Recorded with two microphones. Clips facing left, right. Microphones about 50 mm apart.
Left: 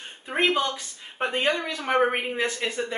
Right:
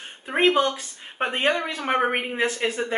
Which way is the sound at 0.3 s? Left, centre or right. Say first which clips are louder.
Right 4 dB; centre.